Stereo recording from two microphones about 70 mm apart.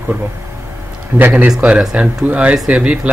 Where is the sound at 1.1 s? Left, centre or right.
Right.